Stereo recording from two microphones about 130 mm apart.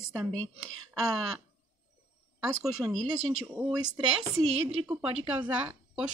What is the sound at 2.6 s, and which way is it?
Speech, centre (ahead or behind).